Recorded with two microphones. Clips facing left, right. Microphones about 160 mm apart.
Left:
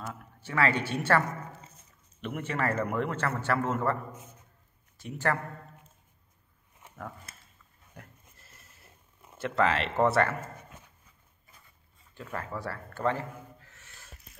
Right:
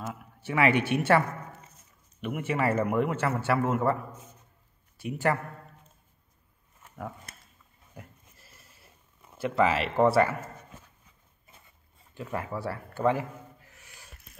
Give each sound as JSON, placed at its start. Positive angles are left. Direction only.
{"t": 0.1, "sound": "a man's voice", "side_deg": -15}
{"t": 2.2, "sound": "a man's voice", "side_deg": -15}
{"t": 5.0, "sound": "a man's voice", "side_deg": -15}
{"t": 8.0, "sound": "goat", "side_deg": -5}
{"t": 9.4, "sound": "speech", "side_deg": -5}
{"t": 12.2, "sound": "a man's voice", "side_deg": -15}